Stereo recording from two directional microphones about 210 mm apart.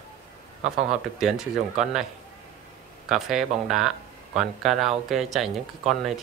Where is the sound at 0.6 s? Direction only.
30° right (ahead or behind).